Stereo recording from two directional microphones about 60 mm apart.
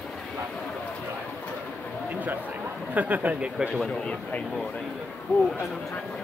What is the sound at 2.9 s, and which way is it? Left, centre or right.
Speech, right.